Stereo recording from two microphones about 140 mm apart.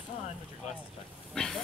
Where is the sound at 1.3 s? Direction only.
5° left (ahead or behind).